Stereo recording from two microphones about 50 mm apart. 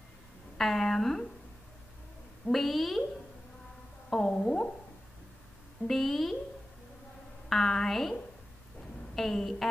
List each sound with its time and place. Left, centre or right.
0.6 s a woman's voice: centre
2.4 s a woman's voice: centre
4.1 s a sound: centre
5.9 s a woman's voice: centre
7.4 s a woman's voice: centre